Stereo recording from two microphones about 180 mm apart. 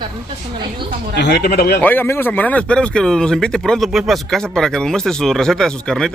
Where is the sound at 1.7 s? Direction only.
10° left (ahead or behind).